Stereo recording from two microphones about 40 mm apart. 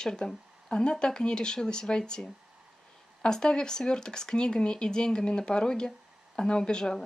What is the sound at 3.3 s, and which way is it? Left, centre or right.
Speech, centre.